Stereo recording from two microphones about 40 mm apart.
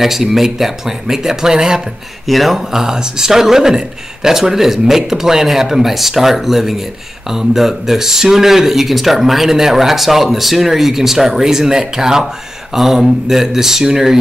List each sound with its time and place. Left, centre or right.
0.0 s speech: centre
2.2 s speech: centre